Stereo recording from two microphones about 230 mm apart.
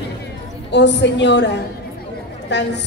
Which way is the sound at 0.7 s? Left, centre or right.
Left.